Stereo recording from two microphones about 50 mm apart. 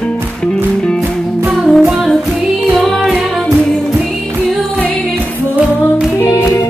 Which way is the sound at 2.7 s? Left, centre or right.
Centre.